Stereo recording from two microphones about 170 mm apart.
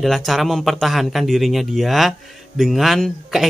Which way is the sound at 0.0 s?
Centre (ahead or behind).